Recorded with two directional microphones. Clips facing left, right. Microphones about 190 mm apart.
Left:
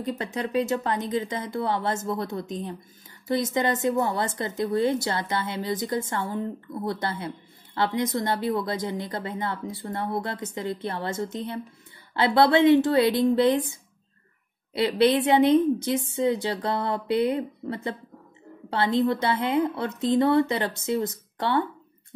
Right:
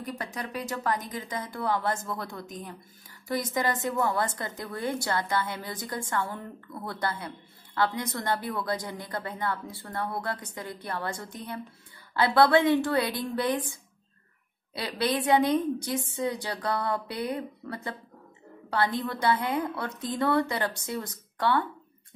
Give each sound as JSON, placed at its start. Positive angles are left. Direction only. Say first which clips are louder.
{"t": 0.0, "sound": "a woman's voice", "louder": "left 6 dB", "side_deg": 25}